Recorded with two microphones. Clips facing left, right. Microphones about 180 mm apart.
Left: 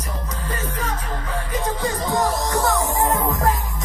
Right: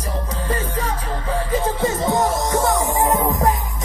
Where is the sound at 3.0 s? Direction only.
20° right (ahead or behind).